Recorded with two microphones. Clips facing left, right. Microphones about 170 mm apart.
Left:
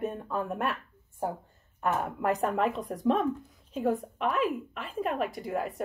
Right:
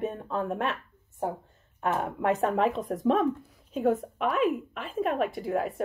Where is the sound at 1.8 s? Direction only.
25° right (ahead or behind).